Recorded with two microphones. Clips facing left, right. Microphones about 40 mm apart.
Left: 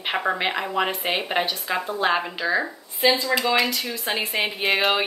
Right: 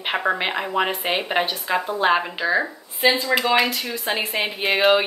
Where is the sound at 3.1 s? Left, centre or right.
Right; by 5.1 s centre.